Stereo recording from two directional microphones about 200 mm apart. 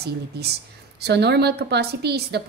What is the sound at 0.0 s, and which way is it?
A woman's voice, 55° right (ahead or behind).